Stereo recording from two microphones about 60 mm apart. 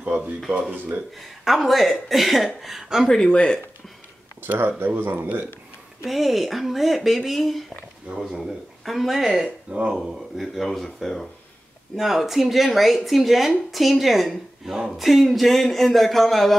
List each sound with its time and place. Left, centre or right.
0.7 s speech: right
1.1 s speech: centre
3.1 s speech: centre
4.4 s speech: right
6.0 s speech: centre
9.7 s speech: centre
9.9 s speech: centre